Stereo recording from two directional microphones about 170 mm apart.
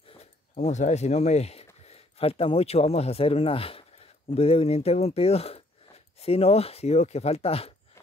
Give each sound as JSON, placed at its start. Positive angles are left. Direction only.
{"t": 0.1, "sound": "speech", "side_deg": 40}